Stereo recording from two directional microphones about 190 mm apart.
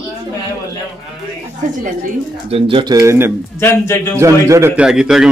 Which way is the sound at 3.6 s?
15° left (ahead or behind).